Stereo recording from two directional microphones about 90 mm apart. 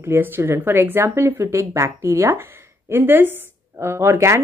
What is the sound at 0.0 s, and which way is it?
Speech, 25° right (ahead or behind).